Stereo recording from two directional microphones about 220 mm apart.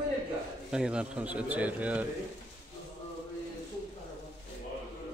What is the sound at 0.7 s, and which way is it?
A man's voice, 5° right (ahead or behind).